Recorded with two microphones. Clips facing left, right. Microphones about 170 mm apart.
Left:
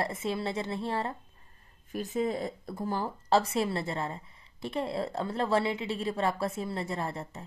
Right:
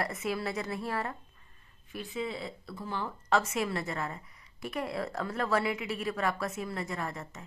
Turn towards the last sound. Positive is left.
turn(degrees=30)  # may be behind; listen again after turning